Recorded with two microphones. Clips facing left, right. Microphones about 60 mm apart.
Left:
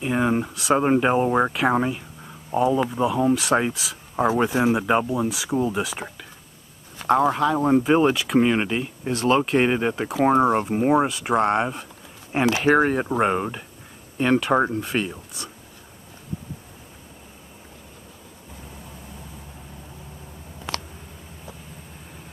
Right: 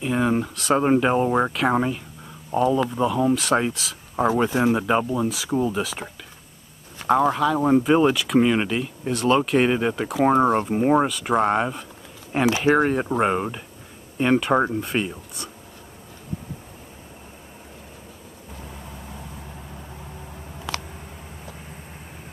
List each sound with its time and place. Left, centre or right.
0.0 s speech: centre
7.1 s speech: centre